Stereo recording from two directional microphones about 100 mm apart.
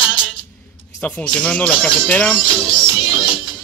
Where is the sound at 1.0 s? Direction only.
10° left (ahead or behind).